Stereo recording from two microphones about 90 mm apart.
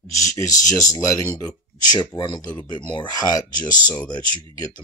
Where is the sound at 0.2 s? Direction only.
40° left (ahead or behind).